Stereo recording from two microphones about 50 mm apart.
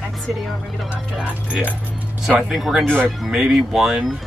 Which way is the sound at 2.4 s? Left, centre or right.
Centre.